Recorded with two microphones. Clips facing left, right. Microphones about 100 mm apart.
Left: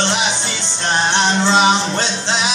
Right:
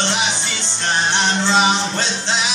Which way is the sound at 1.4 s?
20° left (ahead or behind).